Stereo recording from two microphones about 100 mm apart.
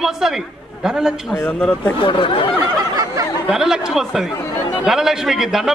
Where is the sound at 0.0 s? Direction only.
5° right (ahead or behind).